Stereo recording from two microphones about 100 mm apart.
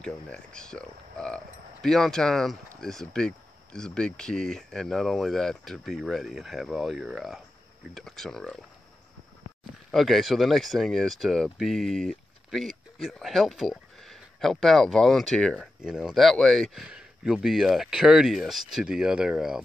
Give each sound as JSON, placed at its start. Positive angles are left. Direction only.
{"t": 0.0, "sound": "speech", "side_deg": 10}
{"t": 9.8, "sound": "speech", "side_deg": 0}
{"t": 15.6, "sound": "speech", "side_deg": -5}